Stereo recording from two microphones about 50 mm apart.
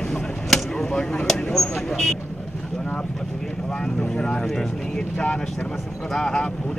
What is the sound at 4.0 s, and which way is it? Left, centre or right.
Speech, centre.